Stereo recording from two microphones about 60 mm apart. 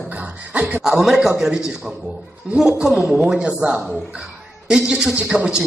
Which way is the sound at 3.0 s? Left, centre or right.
Centre.